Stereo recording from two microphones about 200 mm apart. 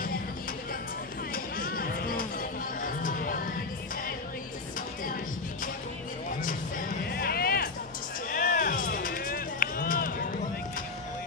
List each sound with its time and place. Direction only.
1.3 s music: 45° left (ahead or behind)
7.1 s a sound: 50° left (ahead or behind)
8.3 s music: 45° left (ahead or behind)